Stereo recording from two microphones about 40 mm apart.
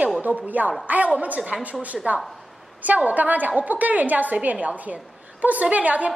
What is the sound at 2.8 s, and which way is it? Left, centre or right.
A woman's voice, right.